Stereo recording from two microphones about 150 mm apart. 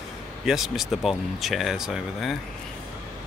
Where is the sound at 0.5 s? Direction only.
Centre (ahead or behind).